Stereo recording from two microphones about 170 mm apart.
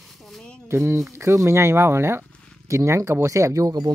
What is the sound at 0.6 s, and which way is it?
Speech, 15° right (ahead or behind).